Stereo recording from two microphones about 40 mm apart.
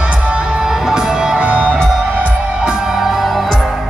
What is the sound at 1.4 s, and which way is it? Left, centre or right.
Music, right.